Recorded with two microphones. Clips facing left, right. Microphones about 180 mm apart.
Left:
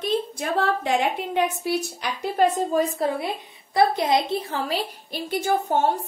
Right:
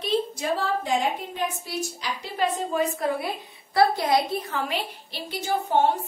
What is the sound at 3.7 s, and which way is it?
A woman's voice, 20° left (ahead or behind).